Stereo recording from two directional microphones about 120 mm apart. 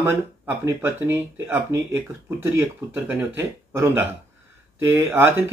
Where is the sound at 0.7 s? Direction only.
15° right (ahead or behind).